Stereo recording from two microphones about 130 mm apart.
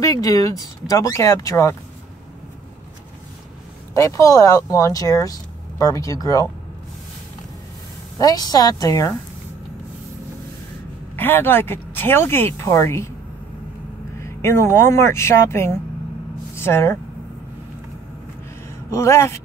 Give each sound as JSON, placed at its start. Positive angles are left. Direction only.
{"t": 0.0, "sound": "speech", "side_deg": 25}
{"t": 3.9, "sound": "speech", "side_deg": 25}
{"t": 8.2, "sound": "speech", "side_deg": 30}
{"t": 11.1, "sound": "speech", "side_deg": 15}
{"t": 14.2, "sound": "speech", "side_deg": 20}
{"t": 18.9, "sound": "speech", "side_deg": 20}